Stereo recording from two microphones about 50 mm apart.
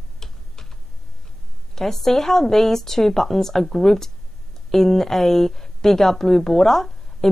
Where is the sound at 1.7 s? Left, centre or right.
Centre.